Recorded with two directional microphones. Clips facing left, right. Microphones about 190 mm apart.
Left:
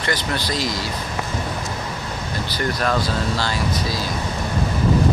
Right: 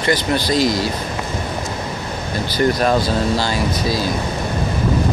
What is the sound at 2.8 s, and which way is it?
Speech, 20° right (ahead or behind).